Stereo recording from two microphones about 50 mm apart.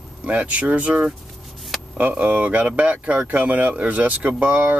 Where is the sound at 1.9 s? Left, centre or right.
Right.